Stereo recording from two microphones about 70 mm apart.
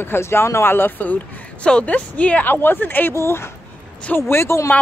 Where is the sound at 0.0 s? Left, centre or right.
Left.